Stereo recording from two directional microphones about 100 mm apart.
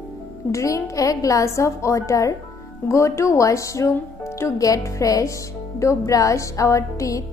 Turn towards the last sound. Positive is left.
turn(degrees=35)  # may be behind; listen again after turning